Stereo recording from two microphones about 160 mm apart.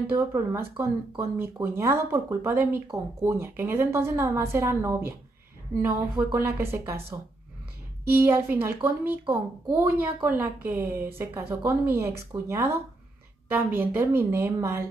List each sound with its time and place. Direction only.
0.1 s speech: 15° right (ahead or behind)